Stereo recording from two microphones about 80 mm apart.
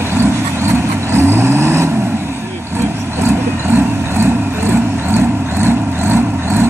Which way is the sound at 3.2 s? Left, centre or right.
Right.